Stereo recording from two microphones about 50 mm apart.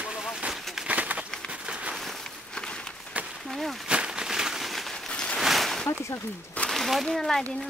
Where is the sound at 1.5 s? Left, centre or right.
Right.